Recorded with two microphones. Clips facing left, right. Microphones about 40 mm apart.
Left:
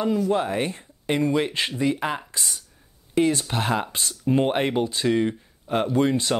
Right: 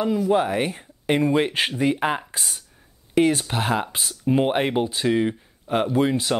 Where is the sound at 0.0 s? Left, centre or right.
Centre; by 2.0 s right.